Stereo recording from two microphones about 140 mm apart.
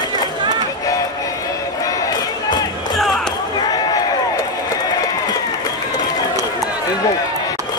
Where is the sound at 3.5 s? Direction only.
30° left (ahead or behind).